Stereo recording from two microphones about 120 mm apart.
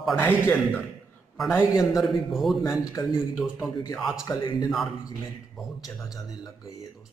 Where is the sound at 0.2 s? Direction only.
15° left (ahead or behind).